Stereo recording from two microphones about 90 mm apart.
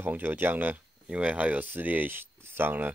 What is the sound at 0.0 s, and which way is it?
Speech, 20° right (ahead or behind).